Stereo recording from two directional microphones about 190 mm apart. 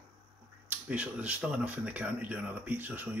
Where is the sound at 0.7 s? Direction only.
5° right (ahead or behind).